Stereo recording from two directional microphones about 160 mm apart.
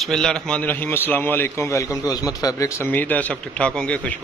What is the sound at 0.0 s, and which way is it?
A man's voice, 5° left (ahead or behind).